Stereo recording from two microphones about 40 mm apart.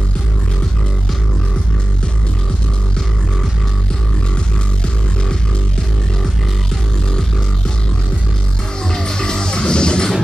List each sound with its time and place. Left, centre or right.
8.9 s music: centre